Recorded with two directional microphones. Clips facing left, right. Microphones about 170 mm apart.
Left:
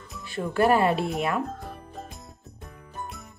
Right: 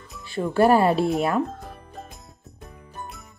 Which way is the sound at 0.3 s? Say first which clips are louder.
Right 4 dB; 30° right (ahead or behind).